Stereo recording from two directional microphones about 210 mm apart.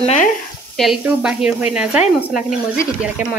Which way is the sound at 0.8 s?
Centre (ahead or behind).